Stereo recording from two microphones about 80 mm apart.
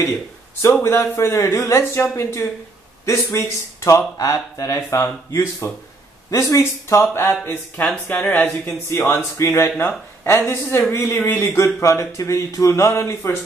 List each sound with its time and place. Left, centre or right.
0.6 s speech: left
3.1 s speech: left
7.2 s speech: left
8.8 s speech: left